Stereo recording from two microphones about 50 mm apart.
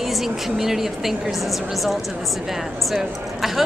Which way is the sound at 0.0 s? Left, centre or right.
Centre.